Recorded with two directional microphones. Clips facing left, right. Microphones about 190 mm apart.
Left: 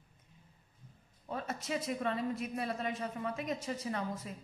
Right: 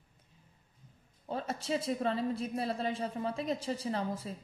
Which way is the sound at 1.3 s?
30° right (ahead or behind).